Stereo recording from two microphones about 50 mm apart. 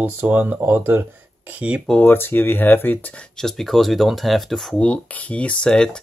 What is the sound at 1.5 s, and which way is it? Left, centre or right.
Speech, right.